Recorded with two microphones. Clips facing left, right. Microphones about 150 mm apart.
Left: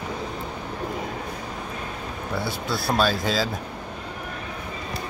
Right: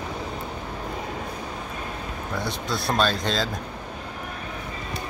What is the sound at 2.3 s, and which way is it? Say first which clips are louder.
Speech: left 1 dB; 5° left (ahead or behind).